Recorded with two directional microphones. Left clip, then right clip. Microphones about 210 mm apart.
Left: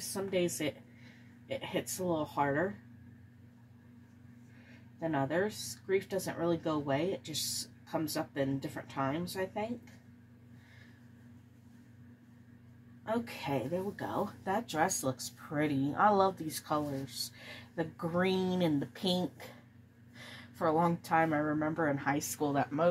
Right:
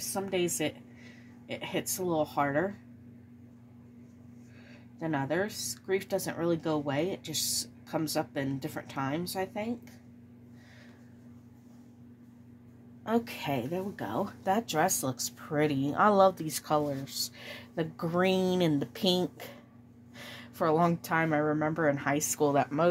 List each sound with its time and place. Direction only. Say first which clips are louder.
0.0 s speech: right 2 dB; 55° right (ahead or behind)
5.0 s speech: right 1 dB; 55° right (ahead or behind)
13.0 s speech: right 5 dB; 60° right (ahead or behind)